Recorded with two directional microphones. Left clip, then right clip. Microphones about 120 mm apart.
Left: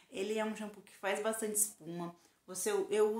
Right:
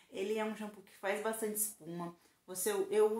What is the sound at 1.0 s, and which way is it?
Speech, 20° left (ahead or behind).